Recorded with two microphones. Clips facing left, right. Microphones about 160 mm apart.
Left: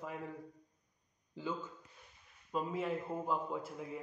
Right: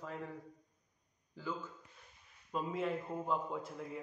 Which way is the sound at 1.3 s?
20° left (ahead or behind).